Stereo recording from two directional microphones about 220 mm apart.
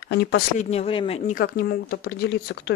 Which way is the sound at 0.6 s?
25° left (ahead or behind).